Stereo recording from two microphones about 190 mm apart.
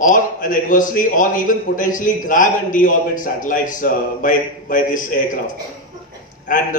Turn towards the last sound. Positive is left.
turn(degrees=45)  # may be behind; listen again after turning